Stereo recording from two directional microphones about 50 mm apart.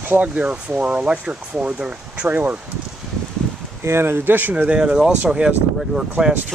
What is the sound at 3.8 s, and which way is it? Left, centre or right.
Speech, right.